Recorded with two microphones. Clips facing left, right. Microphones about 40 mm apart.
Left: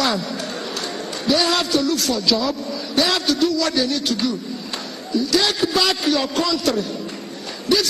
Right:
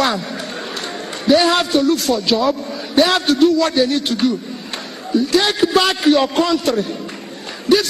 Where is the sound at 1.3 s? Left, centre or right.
Right.